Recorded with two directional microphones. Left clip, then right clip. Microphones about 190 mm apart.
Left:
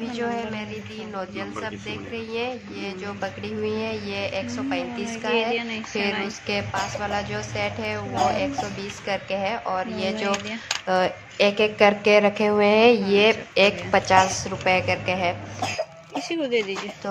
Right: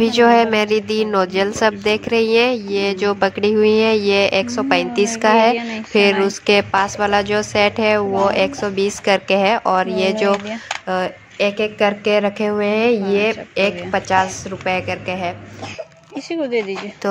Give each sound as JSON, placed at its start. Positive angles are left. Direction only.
{"t": 0.0, "sound": "a woman's voice", "side_deg": -50}
{"t": 10.9, "sound": "a woman's voice", "side_deg": -10}
{"t": 16.3, "sound": "speech", "side_deg": -60}